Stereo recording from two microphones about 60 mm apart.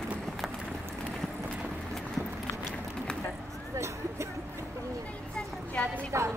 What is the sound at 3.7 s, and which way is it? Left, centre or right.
Music, right.